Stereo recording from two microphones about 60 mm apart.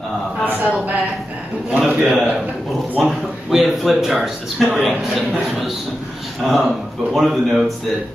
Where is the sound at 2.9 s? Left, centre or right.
Centre.